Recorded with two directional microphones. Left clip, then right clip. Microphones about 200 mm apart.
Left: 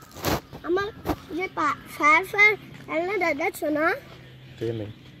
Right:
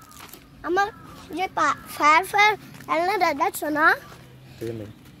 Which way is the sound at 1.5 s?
20° right (ahead or behind).